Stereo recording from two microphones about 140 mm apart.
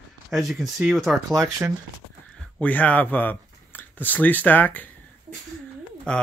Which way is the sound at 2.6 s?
10° left (ahead or behind).